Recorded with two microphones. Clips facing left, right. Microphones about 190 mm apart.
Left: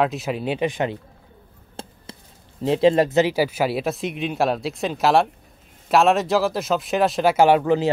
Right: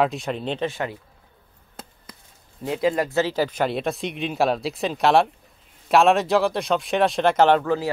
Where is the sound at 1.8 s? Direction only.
30° left (ahead or behind).